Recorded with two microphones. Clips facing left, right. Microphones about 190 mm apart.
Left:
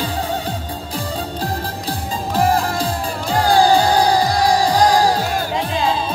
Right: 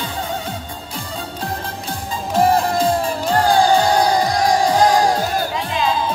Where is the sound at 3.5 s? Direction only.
35° left (ahead or behind).